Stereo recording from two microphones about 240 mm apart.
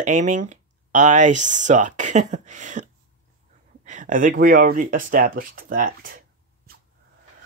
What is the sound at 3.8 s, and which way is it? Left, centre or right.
Speech, right.